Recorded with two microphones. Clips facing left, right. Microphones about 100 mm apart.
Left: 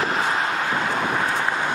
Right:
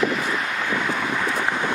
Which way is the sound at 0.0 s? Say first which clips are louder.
Left 1 dB; 35° left (ahead or behind).